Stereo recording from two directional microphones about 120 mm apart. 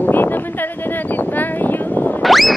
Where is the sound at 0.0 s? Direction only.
15° left (ahead or behind).